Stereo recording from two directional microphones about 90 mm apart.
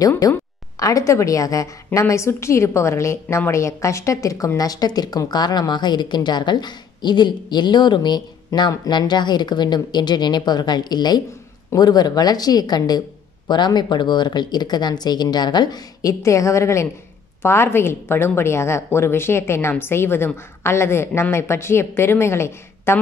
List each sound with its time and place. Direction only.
0.7 s a woman's voice: 40° left (ahead or behind)